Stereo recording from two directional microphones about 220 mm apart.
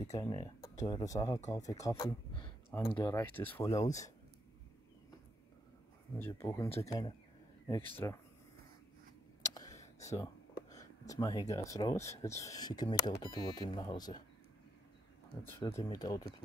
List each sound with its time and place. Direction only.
0.0 s speech: 15° left (ahead or behind)
6.1 s speech: 10° left (ahead or behind)
9.5 s a sound: 15° left (ahead or behind)
10.7 s speech: 15° left (ahead or behind)
15.4 s speech: 10° left (ahead or behind)